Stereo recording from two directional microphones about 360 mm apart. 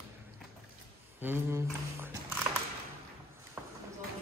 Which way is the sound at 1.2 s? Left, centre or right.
Centre.